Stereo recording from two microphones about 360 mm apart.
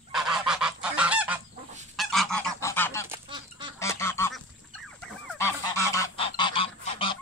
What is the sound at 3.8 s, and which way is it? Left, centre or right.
Goose, centre.